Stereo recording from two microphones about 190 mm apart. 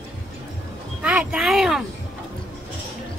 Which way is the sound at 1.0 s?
5° right (ahead or behind).